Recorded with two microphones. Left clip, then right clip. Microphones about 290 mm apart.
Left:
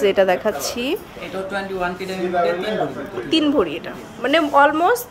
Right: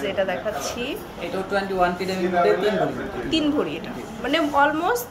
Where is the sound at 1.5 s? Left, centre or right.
Centre.